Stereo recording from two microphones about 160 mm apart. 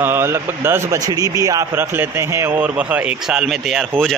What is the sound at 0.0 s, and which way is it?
A man's voice, 15° right (ahead or behind).